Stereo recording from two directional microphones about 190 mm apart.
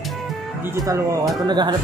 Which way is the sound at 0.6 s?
15° right (ahead or behind).